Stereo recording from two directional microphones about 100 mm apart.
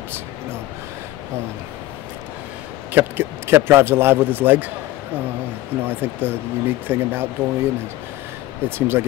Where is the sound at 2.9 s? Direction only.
20° right (ahead or behind).